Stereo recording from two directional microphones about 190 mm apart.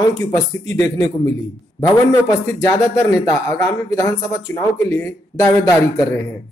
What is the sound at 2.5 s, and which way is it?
Speech, 15° left (ahead or behind).